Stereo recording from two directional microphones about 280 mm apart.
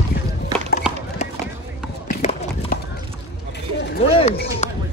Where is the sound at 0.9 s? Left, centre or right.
Centre.